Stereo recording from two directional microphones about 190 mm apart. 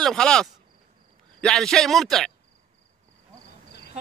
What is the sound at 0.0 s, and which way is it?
A man's voice, 5° left (ahead or behind).